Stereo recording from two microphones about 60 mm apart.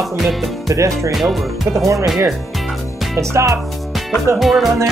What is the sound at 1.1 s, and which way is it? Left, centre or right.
Speech, centre.